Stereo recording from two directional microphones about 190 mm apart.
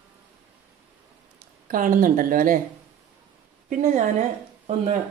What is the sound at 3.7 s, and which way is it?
Speech, 40° right (ahead or behind).